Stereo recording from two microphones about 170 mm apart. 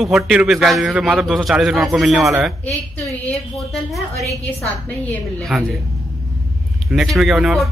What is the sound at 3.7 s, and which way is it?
A man's voice, centre (ahead or behind).